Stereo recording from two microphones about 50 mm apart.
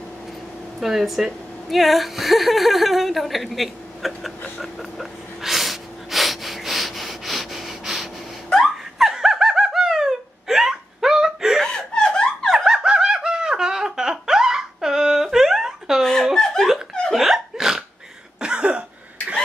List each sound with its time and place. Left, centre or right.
0.7 s a woman's voice: centre
4.6 s a sound: centre
8.9 s laughter: centre
11.6 s laughter: centre
12.6 s snicker: centre
16.0 s a sound: centre
16.3 s laughter: centre
17.1 s hiccup: centre
18.4 s cough: right